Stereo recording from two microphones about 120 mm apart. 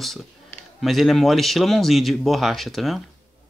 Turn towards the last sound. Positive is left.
turn(degrees=0)  # may be behind; listen again after turning